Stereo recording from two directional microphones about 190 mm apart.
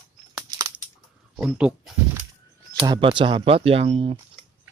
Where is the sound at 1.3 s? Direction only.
5° right (ahead or behind).